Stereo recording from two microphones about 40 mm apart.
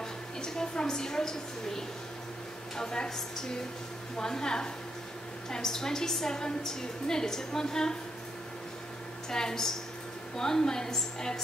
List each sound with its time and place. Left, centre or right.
0.4 s a woman's voice: centre
9.3 s a woman's voice: centre